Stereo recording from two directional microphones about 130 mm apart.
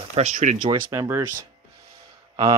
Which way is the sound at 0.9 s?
20° right (ahead or behind).